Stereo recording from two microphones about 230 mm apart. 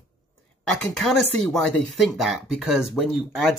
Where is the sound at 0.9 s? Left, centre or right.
Centre.